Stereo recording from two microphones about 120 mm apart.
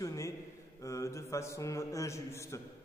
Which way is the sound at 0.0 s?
25° left (ahead or behind).